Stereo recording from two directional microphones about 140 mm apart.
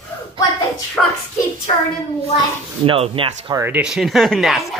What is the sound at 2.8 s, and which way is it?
Speech, 40° right (ahead or behind).